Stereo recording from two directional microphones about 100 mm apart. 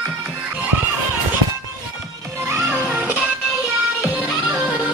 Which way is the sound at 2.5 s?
25° right (ahead or behind).